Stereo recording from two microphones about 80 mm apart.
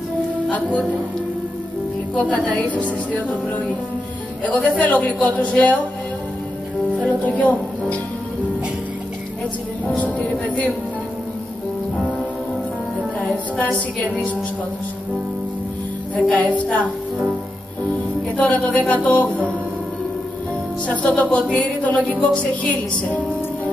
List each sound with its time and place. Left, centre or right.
0.5 s music: centre
2.1 s music: centre
7.1 s music: centre
9.9 s music: centre
13.2 s music: centre
16.2 s music: centre
20.8 s music: centre